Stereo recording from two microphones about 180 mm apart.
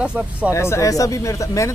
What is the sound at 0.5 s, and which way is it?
Speech, 15° left (ahead or behind).